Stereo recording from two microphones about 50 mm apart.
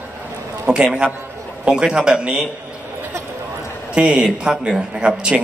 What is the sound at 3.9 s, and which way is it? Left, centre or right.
A man's voice, right.